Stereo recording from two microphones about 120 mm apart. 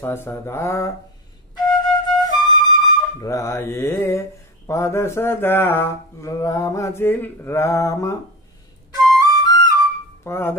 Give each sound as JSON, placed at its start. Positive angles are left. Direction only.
{"t": 0.0, "sound": "mantra", "side_deg": 20}
{"t": 1.6, "sound": "flute", "side_deg": 35}
{"t": 4.6, "sound": "mantra", "side_deg": 25}
{"t": 9.2, "sound": "flute", "side_deg": 35}
{"t": 10.2, "sound": "mantra", "side_deg": 20}